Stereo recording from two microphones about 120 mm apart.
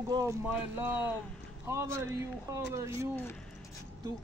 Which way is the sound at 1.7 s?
25° right (ahead or behind).